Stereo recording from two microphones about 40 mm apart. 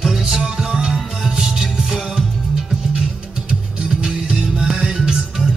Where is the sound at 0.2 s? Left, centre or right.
Centre.